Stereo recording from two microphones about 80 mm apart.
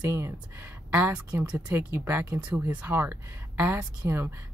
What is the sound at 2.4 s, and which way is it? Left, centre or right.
Speech, centre.